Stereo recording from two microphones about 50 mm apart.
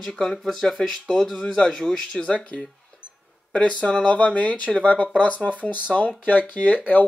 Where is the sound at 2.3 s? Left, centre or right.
Left.